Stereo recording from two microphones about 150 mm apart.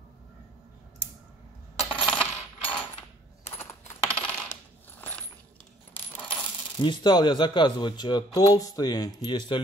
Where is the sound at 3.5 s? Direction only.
15° left (ahead or behind).